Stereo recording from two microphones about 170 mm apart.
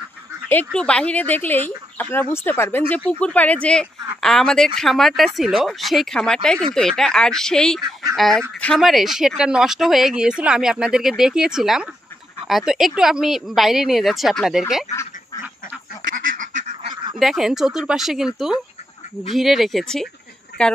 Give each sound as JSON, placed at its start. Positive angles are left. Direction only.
{"t": 0.7, "sound": "speech", "side_deg": 5}
{"t": 16.3, "sound": "duck", "side_deg": -40}
{"t": 17.2, "sound": "speech", "side_deg": 0}
{"t": 20.5, "sound": "a woman's voice", "side_deg": 70}